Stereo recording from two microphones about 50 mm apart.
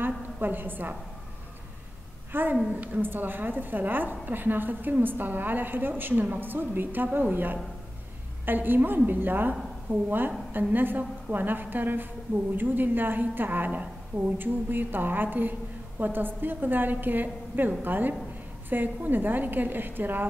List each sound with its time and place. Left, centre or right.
0.0 s a sound: right
2.3 s a woman's voice: right
2.7 s a woman's voice: right
3.0 s a woman's voice: right